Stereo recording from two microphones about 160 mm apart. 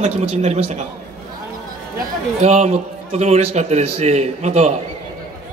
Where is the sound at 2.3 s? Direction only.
45° right (ahead or behind).